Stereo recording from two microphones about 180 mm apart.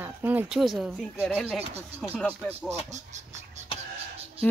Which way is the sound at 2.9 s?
40° right (ahead or behind).